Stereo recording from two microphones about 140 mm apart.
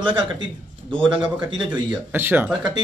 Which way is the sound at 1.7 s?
15° right (ahead or behind).